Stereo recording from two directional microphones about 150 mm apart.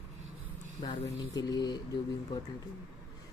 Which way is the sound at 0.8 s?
45° left (ahead or behind).